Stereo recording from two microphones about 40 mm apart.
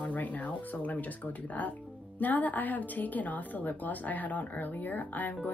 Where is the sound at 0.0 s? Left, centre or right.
Left.